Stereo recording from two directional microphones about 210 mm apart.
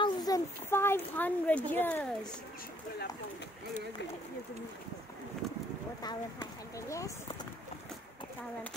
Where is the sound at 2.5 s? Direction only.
45° left (ahead or behind).